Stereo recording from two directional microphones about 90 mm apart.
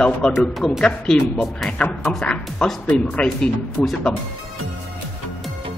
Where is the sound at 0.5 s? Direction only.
Centre (ahead or behind).